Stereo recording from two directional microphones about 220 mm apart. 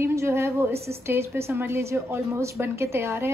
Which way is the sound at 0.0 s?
10° right (ahead or behind).